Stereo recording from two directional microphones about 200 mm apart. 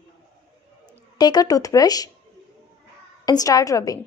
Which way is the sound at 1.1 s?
20° left (ahead or behind).